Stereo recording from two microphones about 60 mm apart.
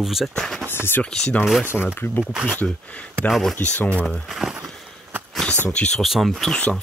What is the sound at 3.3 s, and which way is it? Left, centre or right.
Speech, centre.